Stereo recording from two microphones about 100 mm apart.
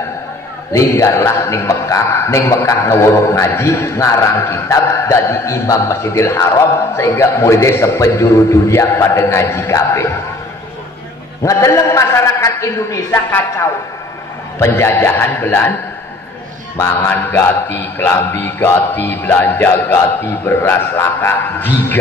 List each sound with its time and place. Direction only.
0.7 s music: 30° left (ahead or behind)
11.4 s music: 30° left (ahead or behind)
14.6 s music: 25° left (ahead or behind)
16.7 s music: 25° left (ahead or behind)